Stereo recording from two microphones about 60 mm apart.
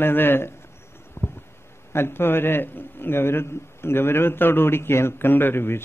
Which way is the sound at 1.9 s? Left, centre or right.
Left.